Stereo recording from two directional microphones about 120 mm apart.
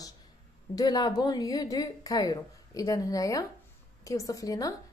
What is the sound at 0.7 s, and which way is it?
A woman's voice, 35° left (ahead or behind).